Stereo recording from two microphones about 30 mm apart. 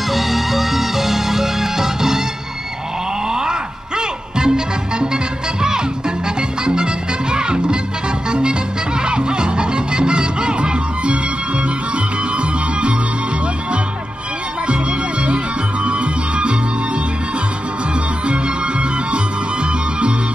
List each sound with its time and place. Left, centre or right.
0.1 s music: centre
3.3 s music: right
14.7 s music: right
18.2 s music: right